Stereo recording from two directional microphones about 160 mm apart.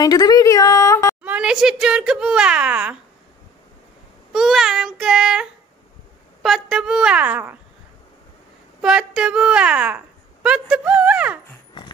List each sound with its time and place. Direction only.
0.0 s a woman's voice: 25° left (ahead or behind)
1.2 s speech: 5° right (ahead or behind)
4.3 s speech: centre (ahead or behind)
8.8 s a woman's voice: 5° right (ahead or behind)